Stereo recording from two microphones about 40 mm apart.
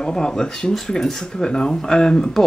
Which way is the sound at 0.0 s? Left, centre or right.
Centre.